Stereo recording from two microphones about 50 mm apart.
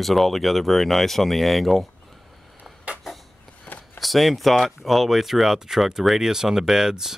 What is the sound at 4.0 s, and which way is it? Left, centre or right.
Speech, centre.